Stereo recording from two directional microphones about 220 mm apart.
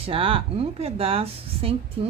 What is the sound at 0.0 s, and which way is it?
Speech, 25° right (ahead or behind).